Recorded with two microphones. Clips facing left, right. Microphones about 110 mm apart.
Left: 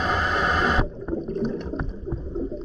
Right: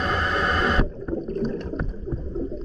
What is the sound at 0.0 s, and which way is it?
Boat, 5° left (ahead or behind).